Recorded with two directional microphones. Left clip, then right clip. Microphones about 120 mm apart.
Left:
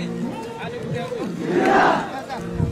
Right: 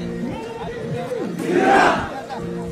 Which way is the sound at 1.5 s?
45° right (ahead or behind).